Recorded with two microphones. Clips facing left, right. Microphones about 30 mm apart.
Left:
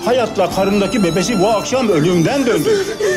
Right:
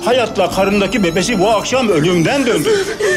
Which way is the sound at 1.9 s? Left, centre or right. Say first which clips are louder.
Left 1 dB; centre.